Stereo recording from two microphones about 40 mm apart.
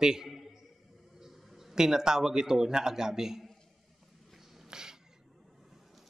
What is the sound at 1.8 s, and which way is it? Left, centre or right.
A man's voice, centre.